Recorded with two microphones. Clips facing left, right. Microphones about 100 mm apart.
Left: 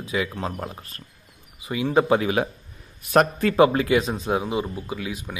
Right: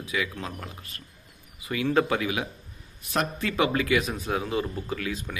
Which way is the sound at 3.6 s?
30° left (ahead or behind).